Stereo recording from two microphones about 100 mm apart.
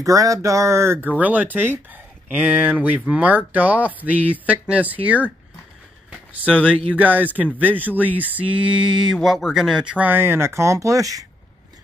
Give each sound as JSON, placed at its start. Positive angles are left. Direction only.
{"t": 0.0, "sound": "speech", "side_deg": -35}
{"t": 6.0, "sound": "a sound", "side_deg": -15}
{"t": 6.9, "sound": "speech", "side_deg": -15}